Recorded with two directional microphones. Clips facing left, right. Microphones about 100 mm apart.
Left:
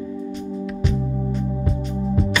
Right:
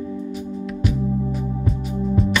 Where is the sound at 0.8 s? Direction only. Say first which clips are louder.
Right 4 dB; 5° right (ahead or behind).